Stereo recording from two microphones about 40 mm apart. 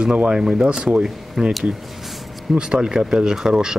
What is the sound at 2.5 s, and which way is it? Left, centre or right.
Speech, right.